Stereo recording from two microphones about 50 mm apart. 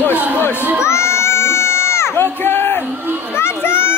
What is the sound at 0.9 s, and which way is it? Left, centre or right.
Crowd, left.